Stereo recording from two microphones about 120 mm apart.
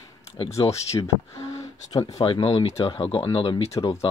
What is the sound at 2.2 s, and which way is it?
Speech, 45° left (ahead or behind).